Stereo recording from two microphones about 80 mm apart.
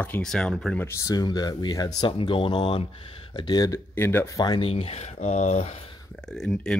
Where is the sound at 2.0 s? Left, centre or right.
Left.